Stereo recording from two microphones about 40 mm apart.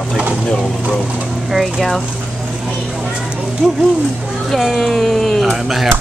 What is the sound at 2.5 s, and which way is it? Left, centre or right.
Speech, centre.